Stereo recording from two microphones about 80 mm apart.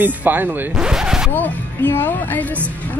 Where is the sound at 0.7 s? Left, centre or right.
Centre.